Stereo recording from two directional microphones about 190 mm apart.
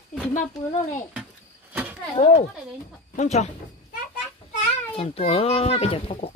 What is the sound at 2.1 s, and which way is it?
Speech, 40° left (ahead or behind).